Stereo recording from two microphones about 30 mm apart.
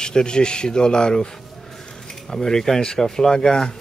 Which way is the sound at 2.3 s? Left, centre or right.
Centre.